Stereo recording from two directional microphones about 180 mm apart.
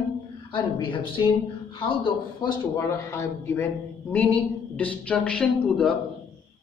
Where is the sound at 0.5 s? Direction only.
25° left (ahead or behind).